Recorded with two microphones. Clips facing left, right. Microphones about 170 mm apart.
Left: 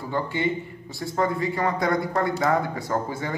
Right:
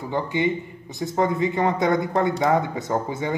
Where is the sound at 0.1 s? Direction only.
20° right (ahead or behind).